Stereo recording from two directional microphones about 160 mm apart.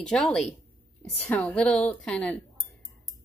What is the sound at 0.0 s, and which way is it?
A woman's voice, 5° left (ahead or behind).